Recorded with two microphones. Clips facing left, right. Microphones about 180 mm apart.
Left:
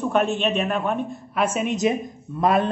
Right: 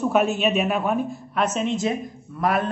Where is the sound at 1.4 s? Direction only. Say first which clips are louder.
Left 2 dB; 10° left (ahead or behind).